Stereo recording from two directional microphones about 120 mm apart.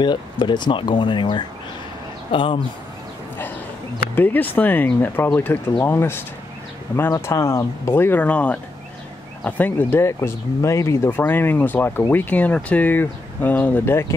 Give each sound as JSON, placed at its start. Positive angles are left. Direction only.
{"t": 0.0, "sound": "speech", "side_deg": 40}
{"t": 4.1, "sound": "speech", "side_deg": 15}